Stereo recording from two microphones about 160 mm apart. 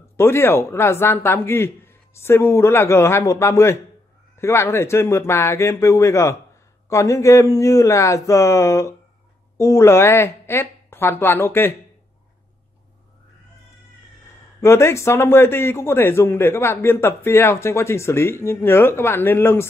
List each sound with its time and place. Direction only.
0.2 s a man's voice: 15° left (ahead or behind)
14.6 s a man's voice: 15° left (ahead or behind)